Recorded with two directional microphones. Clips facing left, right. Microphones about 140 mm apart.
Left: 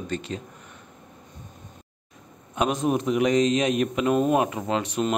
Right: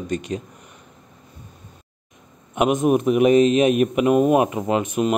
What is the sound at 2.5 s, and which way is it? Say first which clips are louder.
A man's voice: right 6 dB; 20° right (ahead or behind).